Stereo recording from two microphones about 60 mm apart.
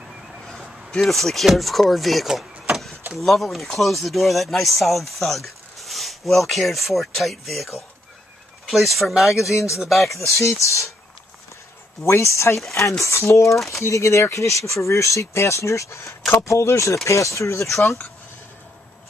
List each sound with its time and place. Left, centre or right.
1.0 s speech: centre
9.5 s speech: left
9.8 s speech: centre
10.4 s speech: left
12.0 s speech: left